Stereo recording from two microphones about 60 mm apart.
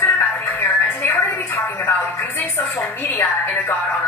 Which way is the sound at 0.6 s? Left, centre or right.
Left.